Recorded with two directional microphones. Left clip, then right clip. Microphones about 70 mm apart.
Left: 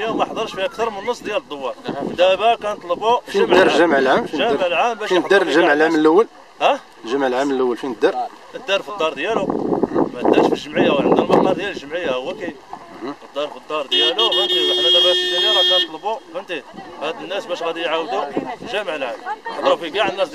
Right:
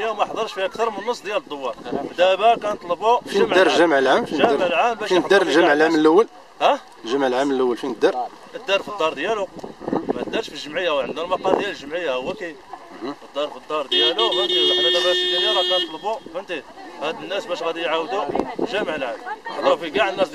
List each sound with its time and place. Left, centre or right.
0.0 s speech: centre
13.8 s speech: left
16.1 s speech: centre
19.2 s speech: left
19.6 s speech: centre